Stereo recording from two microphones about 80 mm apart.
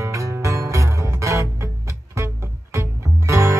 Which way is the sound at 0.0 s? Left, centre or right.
Right.